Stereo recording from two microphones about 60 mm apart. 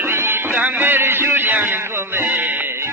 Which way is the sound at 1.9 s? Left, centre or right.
Right.